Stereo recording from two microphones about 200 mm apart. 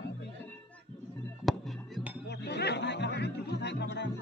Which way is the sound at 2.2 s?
55° left (ahead or behind).